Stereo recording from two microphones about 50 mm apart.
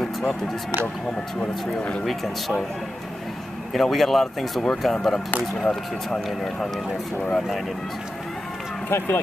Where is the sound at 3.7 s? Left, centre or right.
Centre.